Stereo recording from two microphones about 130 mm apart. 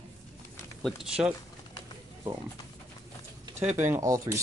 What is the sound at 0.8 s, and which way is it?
Speech, 5° right (ahead or behind).